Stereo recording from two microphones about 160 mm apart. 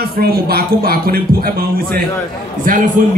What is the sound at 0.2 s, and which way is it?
A man's voice, 70° right (ahead or behind).